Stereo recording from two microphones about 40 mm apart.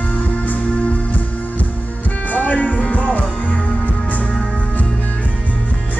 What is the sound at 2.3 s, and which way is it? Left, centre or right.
Music, left.